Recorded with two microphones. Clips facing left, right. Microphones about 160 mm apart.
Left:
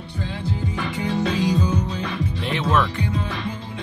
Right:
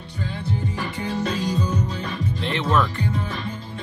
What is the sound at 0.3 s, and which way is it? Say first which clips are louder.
Music: even; 90° left.